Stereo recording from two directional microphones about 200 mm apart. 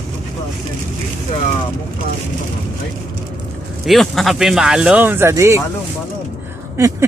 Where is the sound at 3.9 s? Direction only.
Centre (ahead or behind).